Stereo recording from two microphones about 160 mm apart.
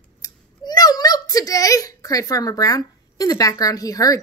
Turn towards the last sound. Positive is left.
turn(degrees=20)  # may be behind; listen again after turning